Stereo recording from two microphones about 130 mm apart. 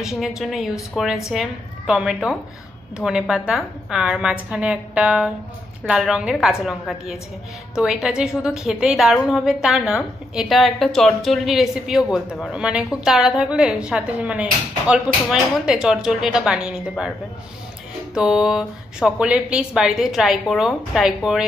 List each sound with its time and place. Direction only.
0.0 s a woman's voice: 5° right (ahead or behind)
18.1 s a woman's voice: 5° right (ahead or behind)